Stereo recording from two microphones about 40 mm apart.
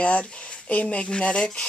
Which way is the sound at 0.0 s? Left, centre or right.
Left.